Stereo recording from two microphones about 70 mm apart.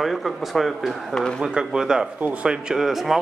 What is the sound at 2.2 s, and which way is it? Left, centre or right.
Speech, centre.